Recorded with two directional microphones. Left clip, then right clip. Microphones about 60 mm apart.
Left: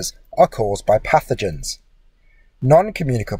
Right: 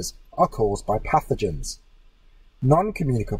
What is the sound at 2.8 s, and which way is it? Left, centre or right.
Speech, left.